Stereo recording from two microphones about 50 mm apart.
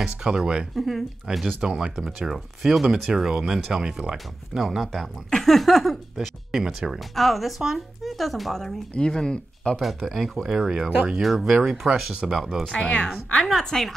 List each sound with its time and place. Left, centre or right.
0.0 s speech: centre
0.7 s speech: centre
1.3 s speech: centre
4.6 s speech: centre
4.8 s speech: centre
6.6 s speech: centre
7.0 s speech: centre
8.9 s speech: centre
9.8 s speech: centre
11.6 s speech: centre
12.0 s speech: centre
12.7 s speech: left
13.5 s speech: centre